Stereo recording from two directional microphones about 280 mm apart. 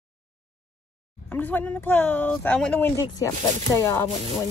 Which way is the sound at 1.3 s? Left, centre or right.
Centre.